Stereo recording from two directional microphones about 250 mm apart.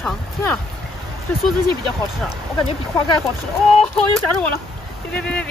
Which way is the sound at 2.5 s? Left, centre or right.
Centre.